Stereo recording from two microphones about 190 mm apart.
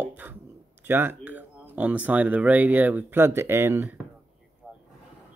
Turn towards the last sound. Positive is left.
turn(degrees=0)  # may be behind; listen again after turning